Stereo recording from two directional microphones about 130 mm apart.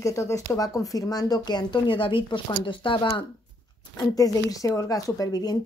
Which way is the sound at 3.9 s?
25° left (ahead or behind).